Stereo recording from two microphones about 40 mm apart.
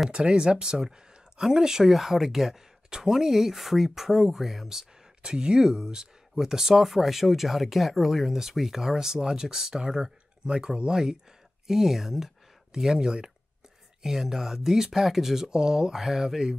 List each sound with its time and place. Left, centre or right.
0.1 s speech: right